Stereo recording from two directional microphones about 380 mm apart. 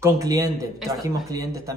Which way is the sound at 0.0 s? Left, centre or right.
Centre.